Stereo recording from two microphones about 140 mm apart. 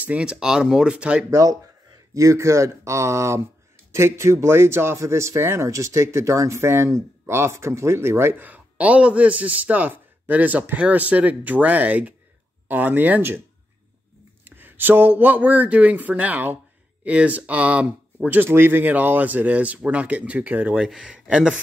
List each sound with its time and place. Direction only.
0.0 s speech: 5° right (ahead or behind)
1.3 s speech: 25° right (ahead or behind)
14.4 s speech: 15° right (ahead or behind)